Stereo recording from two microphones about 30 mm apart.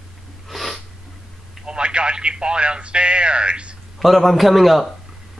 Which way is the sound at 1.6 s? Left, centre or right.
Right.